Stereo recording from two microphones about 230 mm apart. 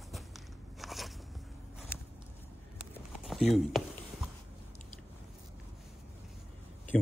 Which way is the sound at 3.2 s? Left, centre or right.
Centre.